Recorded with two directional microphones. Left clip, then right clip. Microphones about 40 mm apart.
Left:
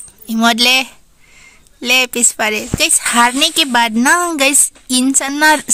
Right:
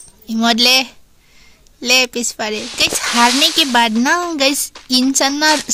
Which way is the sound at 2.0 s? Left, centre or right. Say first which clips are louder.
Left 5 dB; left.